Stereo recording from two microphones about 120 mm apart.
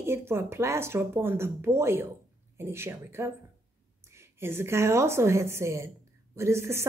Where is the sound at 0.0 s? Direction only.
20° right (ahead or behind).